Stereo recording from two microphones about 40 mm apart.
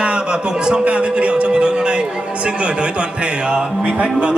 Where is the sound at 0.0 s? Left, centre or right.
Right.